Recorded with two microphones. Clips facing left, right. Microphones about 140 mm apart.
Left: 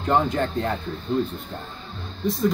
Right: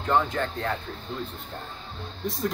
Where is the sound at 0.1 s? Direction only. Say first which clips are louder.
Left 3 dB; 15° left (ahead or behind).